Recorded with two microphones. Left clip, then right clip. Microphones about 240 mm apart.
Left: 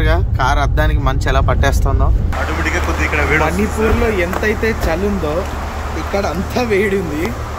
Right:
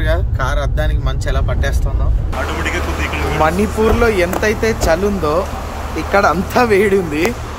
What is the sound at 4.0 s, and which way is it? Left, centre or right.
Speech, centre.